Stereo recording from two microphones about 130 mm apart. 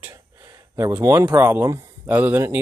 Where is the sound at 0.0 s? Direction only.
20° right (ahead or behind).